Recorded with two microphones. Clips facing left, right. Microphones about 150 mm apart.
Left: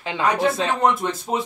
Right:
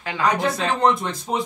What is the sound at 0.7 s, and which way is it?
Speech, 5° left (ahead or behind).